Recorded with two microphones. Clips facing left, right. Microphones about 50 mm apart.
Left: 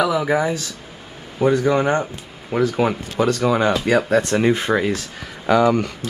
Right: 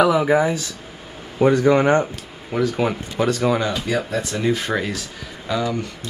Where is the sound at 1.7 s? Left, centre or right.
Centre.